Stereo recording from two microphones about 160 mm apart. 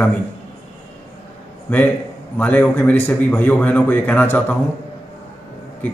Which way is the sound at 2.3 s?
10° left (ahead or behind).